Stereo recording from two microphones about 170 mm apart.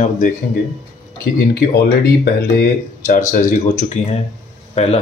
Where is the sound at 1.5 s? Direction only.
65° left (ahead or behind).